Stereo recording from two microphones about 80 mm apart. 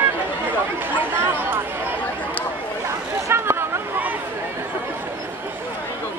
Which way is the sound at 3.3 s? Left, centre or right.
Right.